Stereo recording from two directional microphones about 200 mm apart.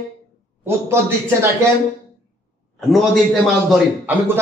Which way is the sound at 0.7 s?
10° right (ahead or behind).